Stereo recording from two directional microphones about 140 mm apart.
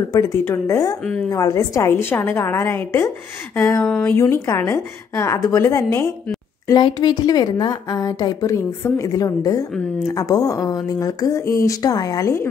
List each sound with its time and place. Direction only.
0.1 s a woman's voice: 20° left (ahead or behind)
3.8 s speech: 5° left (ahead or behind)
4.2 s a woman's voice: 20° left (ahead or behind)
6.8 s a woman's voice: 30° left (ahead or behind)